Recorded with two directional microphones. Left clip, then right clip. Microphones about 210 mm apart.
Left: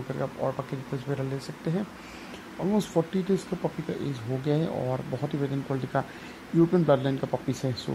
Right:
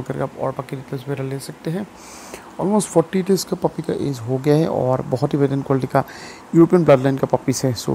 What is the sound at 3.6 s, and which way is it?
Speech, 40° right (ahead or behind).